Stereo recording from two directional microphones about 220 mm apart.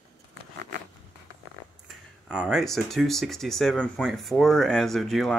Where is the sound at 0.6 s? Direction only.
50° right (ahead or behind).